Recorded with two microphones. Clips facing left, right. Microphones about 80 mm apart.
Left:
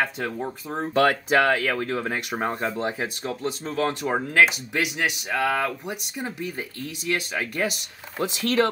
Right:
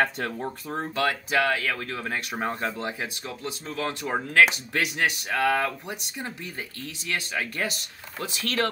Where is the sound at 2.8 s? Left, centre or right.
Left.